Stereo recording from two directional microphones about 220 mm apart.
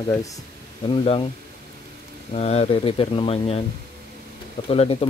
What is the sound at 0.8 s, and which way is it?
Speech, 25° left (ahead or behind).